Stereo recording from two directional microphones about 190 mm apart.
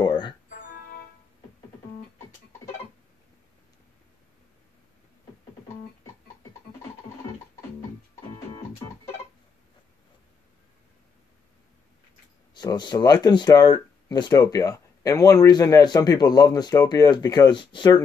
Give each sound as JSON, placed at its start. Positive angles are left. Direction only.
{"t": 0.0, "sound": "music", "side_deg": 25}
{"t": 0.7, "sound": "music", "side_deg": 50}
{"t": 12.5, "sound": "speech", "side_deg": 20}